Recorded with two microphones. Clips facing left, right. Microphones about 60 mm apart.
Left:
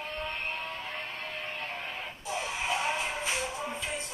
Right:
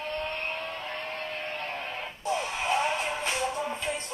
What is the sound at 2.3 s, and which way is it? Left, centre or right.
Music, right.